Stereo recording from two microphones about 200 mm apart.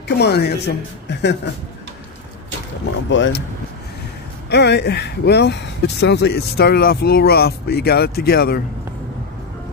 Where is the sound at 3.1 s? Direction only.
65° left (ahead or behind).